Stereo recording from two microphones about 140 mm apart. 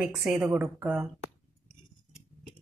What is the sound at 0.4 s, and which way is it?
Speech, 15° right (ahead or behind).